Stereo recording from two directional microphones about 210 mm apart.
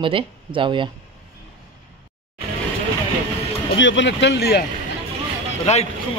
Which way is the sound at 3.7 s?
60° left (ahead or behind).